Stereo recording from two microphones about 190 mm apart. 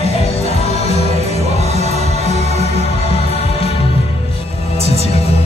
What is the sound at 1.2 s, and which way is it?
Music, 35° right (ahead or behind).